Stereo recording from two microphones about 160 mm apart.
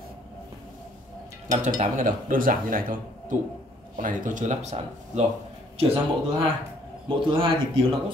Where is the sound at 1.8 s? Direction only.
55° right (ahead or behind).